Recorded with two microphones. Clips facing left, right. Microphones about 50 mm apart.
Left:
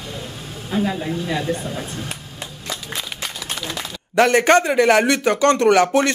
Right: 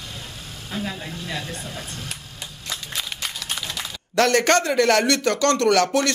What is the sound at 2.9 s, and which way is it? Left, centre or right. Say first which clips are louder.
A man's voice: right 1 dB; centre.